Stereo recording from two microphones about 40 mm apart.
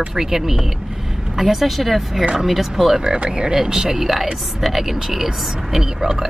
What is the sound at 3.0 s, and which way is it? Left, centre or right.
Speech, centre.